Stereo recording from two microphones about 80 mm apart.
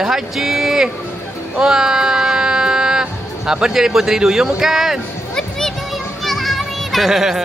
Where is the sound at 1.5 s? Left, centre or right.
Centre.